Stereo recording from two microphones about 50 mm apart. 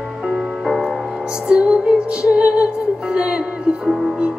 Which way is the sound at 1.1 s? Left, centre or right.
Centre.